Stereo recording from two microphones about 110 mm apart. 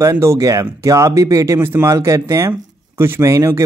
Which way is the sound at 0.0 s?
25° right (ahead or behind).